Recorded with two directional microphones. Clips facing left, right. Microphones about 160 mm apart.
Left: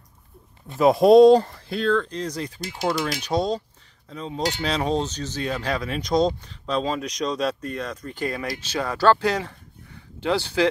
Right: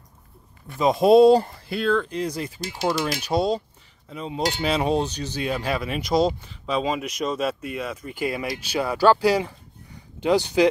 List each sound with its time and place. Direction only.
0.7 s speech: 5° left (ahead or behind); by 10.7 s 15° right (ahead or behind)